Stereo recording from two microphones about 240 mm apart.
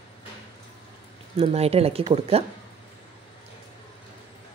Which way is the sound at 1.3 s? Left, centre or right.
Right.